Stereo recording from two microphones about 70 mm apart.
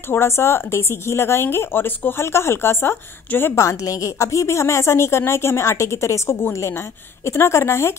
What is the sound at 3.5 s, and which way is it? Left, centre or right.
A woman's voice, left.